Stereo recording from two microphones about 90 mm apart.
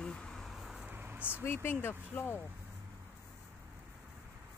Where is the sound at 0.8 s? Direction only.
25° right (ahead or behind).